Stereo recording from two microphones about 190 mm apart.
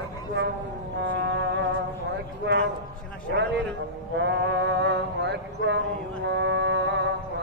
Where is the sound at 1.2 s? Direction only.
70° right (ahead or behind).